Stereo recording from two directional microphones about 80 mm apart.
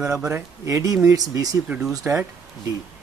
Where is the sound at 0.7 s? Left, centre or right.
Right.